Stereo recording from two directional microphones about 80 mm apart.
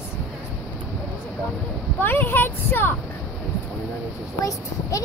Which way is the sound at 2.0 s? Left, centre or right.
Left.